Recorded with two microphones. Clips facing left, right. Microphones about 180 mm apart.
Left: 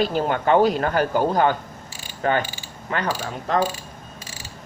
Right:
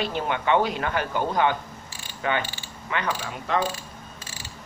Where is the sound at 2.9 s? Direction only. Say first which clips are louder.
Left 3 dB; 35° left (ahead or behind).